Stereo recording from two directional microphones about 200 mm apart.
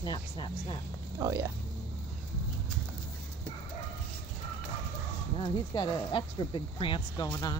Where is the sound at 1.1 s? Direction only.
15° right (ahead or behind).